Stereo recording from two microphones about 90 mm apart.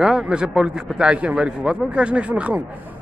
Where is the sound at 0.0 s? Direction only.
5° right (ahead or behind).